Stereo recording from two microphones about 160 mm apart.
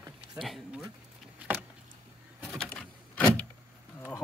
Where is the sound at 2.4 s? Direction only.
5° left (ahead or behind).